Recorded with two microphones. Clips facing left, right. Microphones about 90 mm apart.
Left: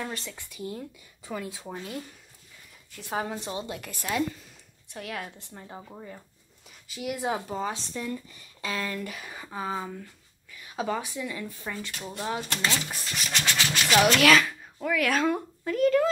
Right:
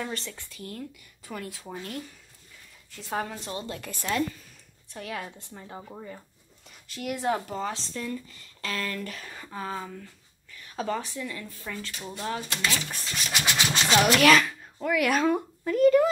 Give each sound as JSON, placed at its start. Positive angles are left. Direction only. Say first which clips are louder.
{"t": 0.0, "sound": "a woman's voice", "louder": "right 1 dB", "side_deg": 5}
{"t": 0.5, "sound": "speech", "louder": "left 5 dB", "side_deg": 15}
{"t": 1.8, "sound": "a woman's voice", "louder": "even", "side_deg": 5}
{"t": 3.3, "sound": "a woman's voice", "louder": "left 2 dB", "side_deg": 15}
{"t": 6.9, "sound": "speech", "louder": "right 2 dB", "side_deg": 5}
{"t": 12.0, "sound": "a woman's voice", "louder": "left 1 dB", "side_deg": 0}
{"t": 12.3, "sound": "speech", "louder": "left 1 dB", "side_deg": 15}
{"t": 12.9, "sound": "a woman's voice", "louder": "even", "side_deg": 5}
{"t": 13.3, "sound": "a sound", "louder": "right 1 dB", "side_deg": -15}
{"t": 14.0, "sound": "speech", "louder": "right 2 dB", "side_deg": -5}